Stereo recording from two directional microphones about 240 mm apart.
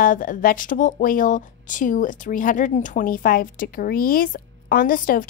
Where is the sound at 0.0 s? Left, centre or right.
Left.